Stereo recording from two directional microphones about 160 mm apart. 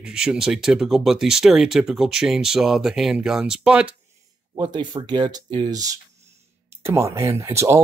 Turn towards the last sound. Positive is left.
turn(degrees=-15)  # may be behind; listen again after turning